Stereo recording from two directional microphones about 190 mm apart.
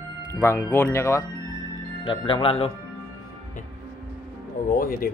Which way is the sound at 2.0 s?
25° left (ahead or behind).